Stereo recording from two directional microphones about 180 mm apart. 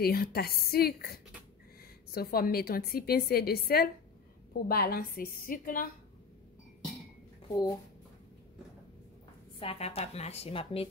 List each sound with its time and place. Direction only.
0.0 s a woman's voice: 55° left (ahead or behind)
7.4 s speech: 20° left (ahead or behind)
9.6 s a woman's voice: 35° left (ahead or behind)